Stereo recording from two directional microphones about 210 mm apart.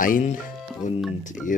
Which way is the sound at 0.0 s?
40° left (ahead or behind).